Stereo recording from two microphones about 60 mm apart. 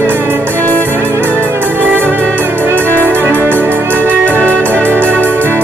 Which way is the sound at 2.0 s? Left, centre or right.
Left.